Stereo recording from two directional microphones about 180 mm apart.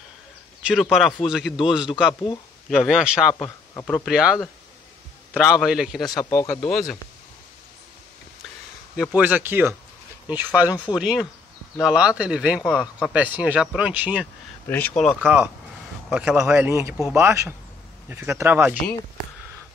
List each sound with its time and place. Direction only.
0.7 s speech: 5° right (ahead or behind)
1.9 s speech: 25° left (ahead or behind)
2.7 s speech: centre (ahead or behind)
3.4 s speech: 10° left (ahead or behind)
6.0 s speech: 20° left (ahead or behind)
6.6 s speech: centre (ahead or behind)
8.9 s speech: 5° right (ahead or behind)
14.7 s speech: 10° left (ahead or behind)
15.2 s speech: 5° right (ahead or behind)